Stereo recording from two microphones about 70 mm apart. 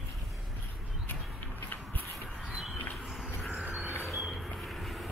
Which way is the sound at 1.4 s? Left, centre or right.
Left.